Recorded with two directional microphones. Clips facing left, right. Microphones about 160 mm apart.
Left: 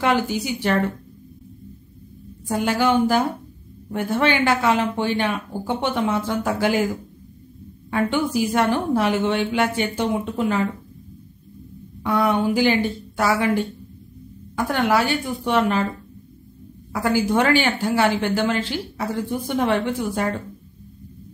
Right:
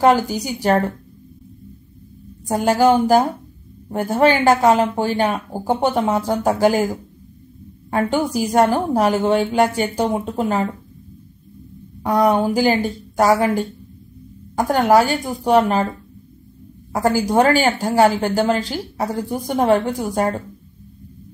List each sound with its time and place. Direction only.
0.0 s speech: 40° right (ahead or behind)
2.4 s speech: 40° right (ahead or behind)
8.1 s speech: 40° right (ahead or behind)
12.0 s speech: 40° right (ahead or behind)
14.5 s speech: 40° right (ahead or behind)
16.9 s speech: 40° right (ahead or behind)